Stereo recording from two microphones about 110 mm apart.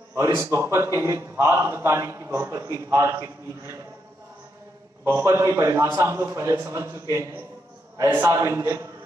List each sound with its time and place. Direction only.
0.1 s a man's voice: 25° right (ahead or behind)
5.0 s a man's voice: 25° right (ahead or behind)